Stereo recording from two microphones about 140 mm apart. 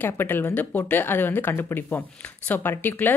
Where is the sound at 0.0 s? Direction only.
15° left (ahead or behind).